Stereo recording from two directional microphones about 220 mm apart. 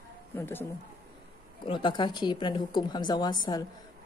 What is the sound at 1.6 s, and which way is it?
A woman's voice, 20° left (ahead or behind).